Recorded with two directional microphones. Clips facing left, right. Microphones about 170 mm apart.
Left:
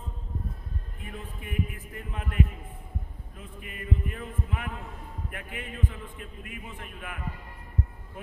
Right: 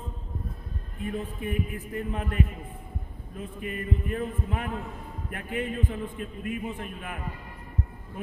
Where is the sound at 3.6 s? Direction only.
40° right (ahead or behind).